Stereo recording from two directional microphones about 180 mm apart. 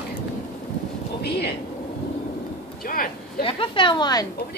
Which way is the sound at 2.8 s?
55° left (ahead or behind).